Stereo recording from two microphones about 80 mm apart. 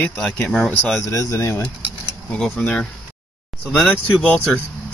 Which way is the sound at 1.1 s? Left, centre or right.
Left.